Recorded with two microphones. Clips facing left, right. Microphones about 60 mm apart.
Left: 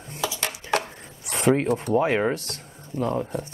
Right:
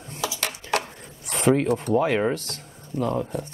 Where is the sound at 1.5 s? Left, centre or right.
Centre.